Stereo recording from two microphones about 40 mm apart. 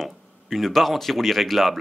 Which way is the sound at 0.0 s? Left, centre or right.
Centre.